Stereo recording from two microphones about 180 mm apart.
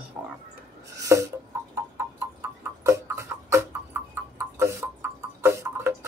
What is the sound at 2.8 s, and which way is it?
Music, 15° right (ahead or behind).